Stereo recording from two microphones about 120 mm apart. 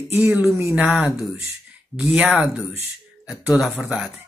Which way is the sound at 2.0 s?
5° right (ahead or behind).